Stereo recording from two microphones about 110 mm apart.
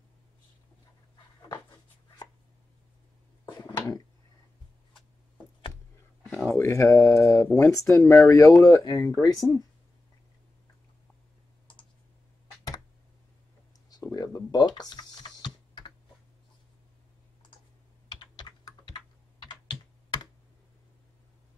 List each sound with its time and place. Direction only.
3.5 s a sound: 35° left (ahead or behind)
6.6 s speech: 25° left (ahead or behind)
13.8 s computer keyboard: 35° left (ahead or behind)
18.0 s computer keyboard: 40° left (ahead or behind)